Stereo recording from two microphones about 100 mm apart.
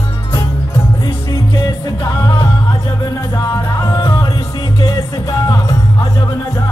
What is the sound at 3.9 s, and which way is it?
Music, 45° left (ahead or behind).